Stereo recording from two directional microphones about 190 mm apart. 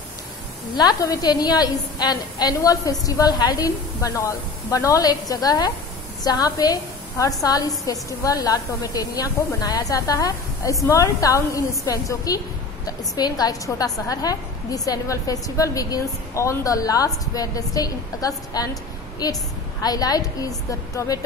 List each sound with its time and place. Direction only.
0.7 s a woman's voice: 20° left (ahead or behind)